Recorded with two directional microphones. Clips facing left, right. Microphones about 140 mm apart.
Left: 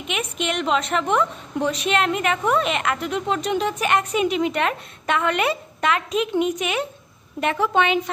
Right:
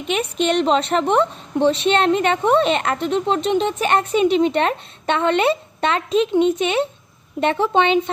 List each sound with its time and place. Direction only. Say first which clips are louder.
0.1 s a woman's voice: right 7 dB; 35° right (ahead or behind)